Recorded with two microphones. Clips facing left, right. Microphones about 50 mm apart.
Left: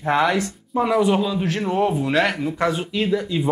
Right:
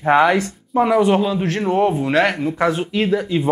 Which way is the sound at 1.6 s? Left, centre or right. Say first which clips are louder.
Right 4 dB; centre.